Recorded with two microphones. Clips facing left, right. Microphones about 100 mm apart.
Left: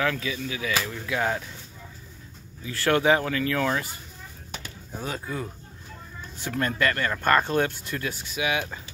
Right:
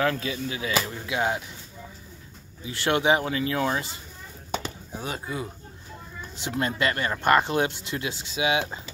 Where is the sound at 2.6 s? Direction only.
20° right (ahead or behind).